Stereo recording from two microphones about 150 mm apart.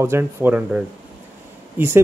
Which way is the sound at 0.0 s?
15° right (ahead or behind).